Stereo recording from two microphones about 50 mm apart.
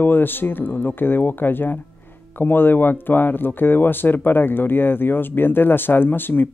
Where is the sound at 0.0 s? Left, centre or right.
Left.